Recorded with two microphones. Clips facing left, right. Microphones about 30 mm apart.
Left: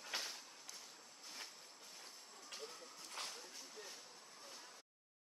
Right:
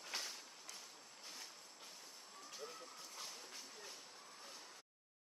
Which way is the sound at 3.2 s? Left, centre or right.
Left.